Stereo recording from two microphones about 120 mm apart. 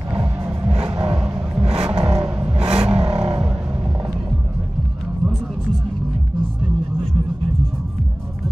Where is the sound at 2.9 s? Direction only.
50° right (ahead or behind).